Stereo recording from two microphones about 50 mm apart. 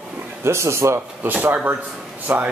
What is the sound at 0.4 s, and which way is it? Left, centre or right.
Speech, right.